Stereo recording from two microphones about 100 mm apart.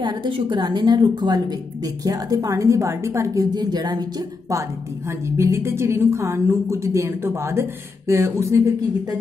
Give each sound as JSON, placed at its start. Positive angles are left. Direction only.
{"t": 0.0, "sound": "a woman's voice", "side_deg": -50}